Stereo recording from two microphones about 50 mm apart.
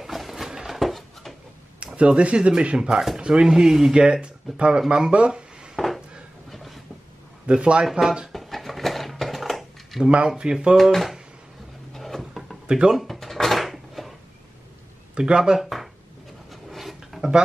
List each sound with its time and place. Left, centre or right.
0.0 s a sound: centre
2.0 s speech: right
6.5 s vehicle: centre
7.4 s speech: right
7.8 s speech: centre
8.3 s a sound: centre
10.0 s speech: centre
10.8 s speech: centre
11.9 s drawer open or close: centre
12.6 s speech: centre
12.9 s drawer open or close: centre
15.1 s speech: centre
15.6 s a sound: centre